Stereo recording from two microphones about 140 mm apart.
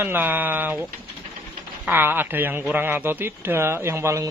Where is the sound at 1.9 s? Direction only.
15° right (ahead or behind).